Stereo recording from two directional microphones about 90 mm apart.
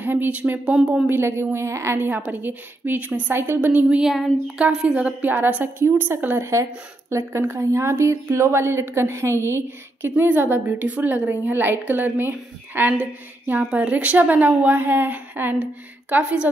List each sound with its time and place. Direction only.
0.0 s speech: 20° right (ahead or behind)
1.0 s a woman's voice: 25° right (ahead or behind)
4.0 s a woman's voice: 5° right (ahead or behind)